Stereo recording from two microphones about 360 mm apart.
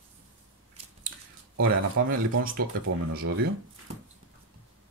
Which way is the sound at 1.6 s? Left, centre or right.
Right.